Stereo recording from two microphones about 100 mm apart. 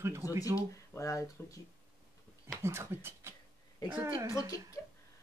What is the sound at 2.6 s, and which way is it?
Speech, 25° right (ahead or behind).